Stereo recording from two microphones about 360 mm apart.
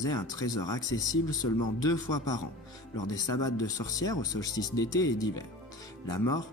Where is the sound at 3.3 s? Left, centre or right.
Left.